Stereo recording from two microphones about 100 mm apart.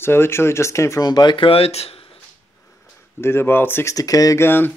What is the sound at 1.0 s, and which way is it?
Speech, 45° left (ahead or behind).